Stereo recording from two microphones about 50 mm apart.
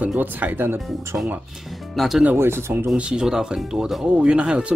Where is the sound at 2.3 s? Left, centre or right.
Right.